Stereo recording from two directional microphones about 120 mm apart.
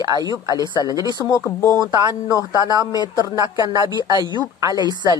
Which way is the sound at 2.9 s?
35° right (ahead or behind).